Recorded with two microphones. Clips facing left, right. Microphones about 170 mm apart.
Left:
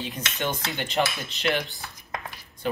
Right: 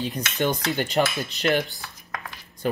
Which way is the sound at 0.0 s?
40° right (ahead or behind).